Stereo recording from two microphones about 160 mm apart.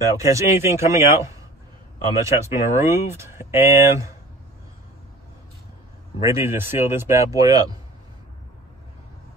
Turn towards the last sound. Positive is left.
turn(degrees=-25)  # may be behind; listen again after turning